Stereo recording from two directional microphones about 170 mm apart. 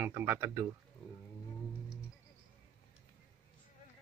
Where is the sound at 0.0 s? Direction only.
15° right (ahead or behind).